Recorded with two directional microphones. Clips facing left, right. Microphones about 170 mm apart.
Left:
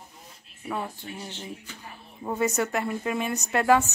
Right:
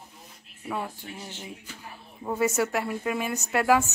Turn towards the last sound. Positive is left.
turn(degrees=-5)  # may be behind; listen again after turning